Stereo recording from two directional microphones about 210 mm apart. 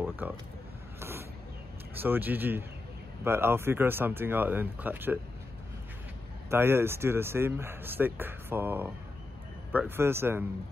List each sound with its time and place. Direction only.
0.0 s a sound: 10° right (ahead or behind)
2.0 s speech: 10° right (ahead or behind)
6.5 s speech: 10° right (ahead or behind)